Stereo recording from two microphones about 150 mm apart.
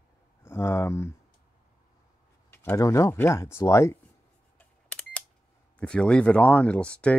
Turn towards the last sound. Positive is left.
turn(degrees=10)  # may be behind; listen again after turning